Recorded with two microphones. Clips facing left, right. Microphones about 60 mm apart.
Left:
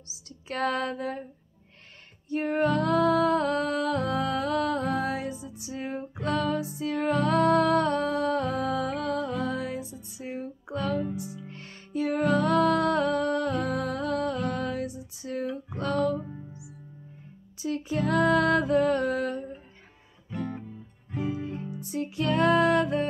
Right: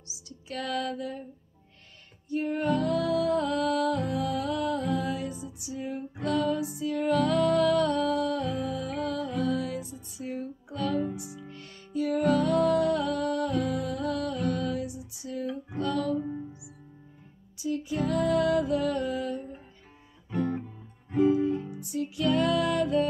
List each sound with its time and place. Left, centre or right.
0.1 s music: left
2.2 s music: left
5.8 s music: left
17.6 s music: left
21.8 s music: left